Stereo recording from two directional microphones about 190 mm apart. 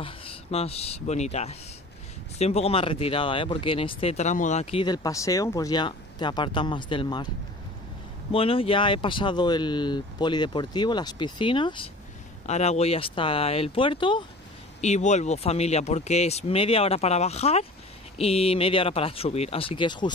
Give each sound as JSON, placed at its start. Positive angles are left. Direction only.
{"t": 0.0, "sound": "speech", "side_deg": 30}
{"t": 8.3, "sound": "speech", "side_deg": 30}
{"t": 14.8, "sound": "speech", "side_deg": 35}